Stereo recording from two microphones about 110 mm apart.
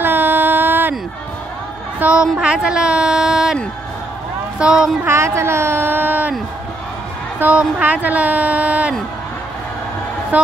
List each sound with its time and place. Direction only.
0.0 s a sound: 20° right (ahead or behind)
2.0 s a woman's voice: 10° right (ahead or behind)
4.6 s a woman's voice: 5° right (ahead or behind)
5.0 s speech: 25° right (ahead or behind)
7.3 s a woman's voice: 15° right (ahead or behind)
10.3 s a woman's voice: 15° right (ahead or behind)